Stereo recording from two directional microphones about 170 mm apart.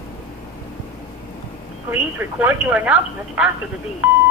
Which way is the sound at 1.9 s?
10° right (ahead or behind).